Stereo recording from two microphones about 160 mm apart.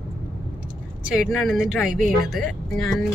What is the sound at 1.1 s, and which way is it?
Speech, centre (ahead or behind).